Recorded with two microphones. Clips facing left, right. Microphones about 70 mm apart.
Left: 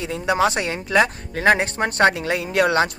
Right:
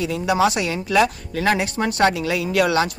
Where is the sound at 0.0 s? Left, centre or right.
Left.